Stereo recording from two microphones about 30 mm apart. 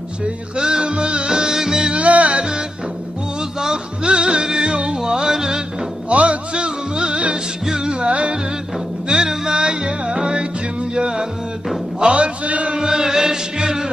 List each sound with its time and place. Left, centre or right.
0.6 s music: right
2.0 s music: right
4.0 s music: right
4.4 s music: right
6.0 s music: right
7.6 s music: right
8.1 s music: right
9.1 s music: centre
9.6 s music: right
12.0 s a man's voice: right
12.4 s chant: right
12.7 s chant: centre